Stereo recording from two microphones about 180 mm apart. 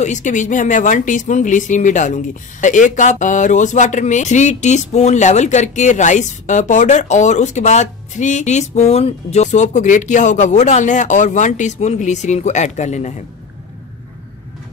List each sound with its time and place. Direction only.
0.0 s speech: 45° left (ahead or behind)